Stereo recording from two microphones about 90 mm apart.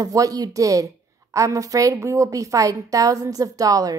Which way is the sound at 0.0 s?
40° right (ahead or behind).